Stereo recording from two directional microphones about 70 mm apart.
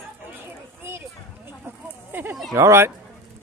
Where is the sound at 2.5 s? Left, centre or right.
Right.